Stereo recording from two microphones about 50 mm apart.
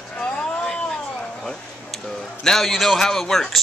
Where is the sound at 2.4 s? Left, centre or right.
Centre.